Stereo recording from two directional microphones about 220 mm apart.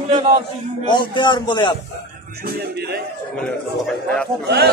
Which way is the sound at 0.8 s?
20° left (ahead or behind).